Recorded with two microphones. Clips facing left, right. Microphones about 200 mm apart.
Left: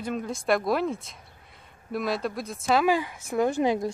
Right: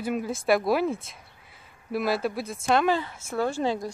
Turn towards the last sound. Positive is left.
turn(degrees=20)  # may be behind; listen again after turning